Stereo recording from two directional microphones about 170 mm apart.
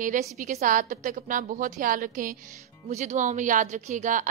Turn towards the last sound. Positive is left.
turn(degrees=-50)  # may be behind; listen again after turning